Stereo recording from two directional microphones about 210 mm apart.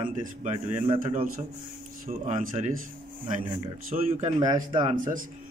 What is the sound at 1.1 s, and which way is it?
Speech, 35° right (ahead or behind).